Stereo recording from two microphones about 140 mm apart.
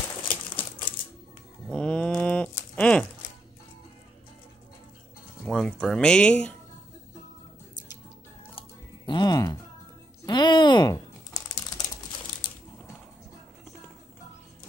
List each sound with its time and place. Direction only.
1.7 s livestock: 5° left (ahead or behind)
2.7 s a sound: 10° left (ahead or behind)
5.4 s speech: 5° left (ahead or behind)
8.5 s music: 30° left (ahead or behind)
10.2 s typing: 30° left (ahead or behind)